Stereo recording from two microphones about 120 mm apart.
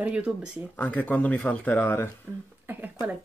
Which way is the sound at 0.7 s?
15° left (ahead or behind).